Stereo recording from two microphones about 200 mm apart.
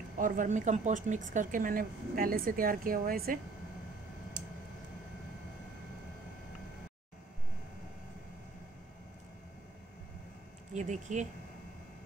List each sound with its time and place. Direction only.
0.2 s speech: 40° right (ahead or behind)
4.4 s a sound: 60° right (ahead or behind)
10.7 s speech: 35° right (ahead or behind)